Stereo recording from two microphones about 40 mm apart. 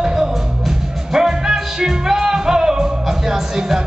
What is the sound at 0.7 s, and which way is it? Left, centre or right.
Music, centre.